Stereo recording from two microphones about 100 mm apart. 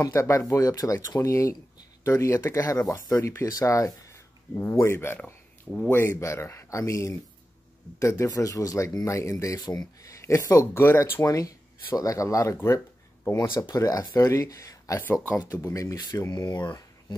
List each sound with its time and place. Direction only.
0.0 s speech: 25° left (ahead or behind)